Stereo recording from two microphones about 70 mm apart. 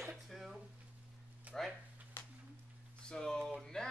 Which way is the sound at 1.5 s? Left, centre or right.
Right.